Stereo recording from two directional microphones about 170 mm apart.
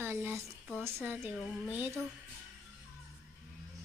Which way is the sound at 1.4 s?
5° left (ahead or behind).